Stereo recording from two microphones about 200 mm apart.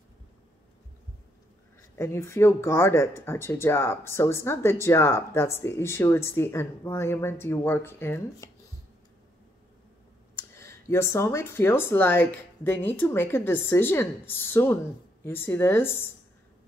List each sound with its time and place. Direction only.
2.0 s speech: 15° left (ahead or behind)
10.3 s speech: 15° left (ahead or behind)